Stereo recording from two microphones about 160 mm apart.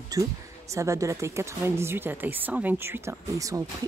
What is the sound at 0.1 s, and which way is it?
Speech, 20° right (ahead or behind).